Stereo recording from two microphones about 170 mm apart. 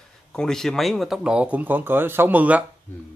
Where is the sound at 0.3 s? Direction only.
5° left (ahead or behind).